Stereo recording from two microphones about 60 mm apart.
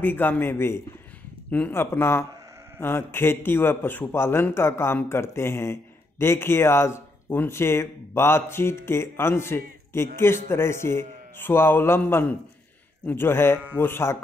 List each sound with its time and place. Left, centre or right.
0.0 s a man's voice: left
13.1 s a man's voice: left